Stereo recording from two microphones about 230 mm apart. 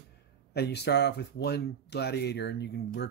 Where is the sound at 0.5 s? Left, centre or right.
Left.